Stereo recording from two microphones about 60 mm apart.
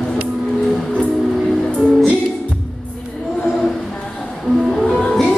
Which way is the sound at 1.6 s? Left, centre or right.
Centre.